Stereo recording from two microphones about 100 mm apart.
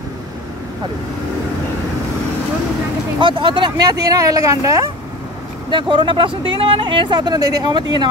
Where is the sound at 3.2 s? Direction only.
55° right (ahead or behind); by 4.8 s 30° right (ahead or behind).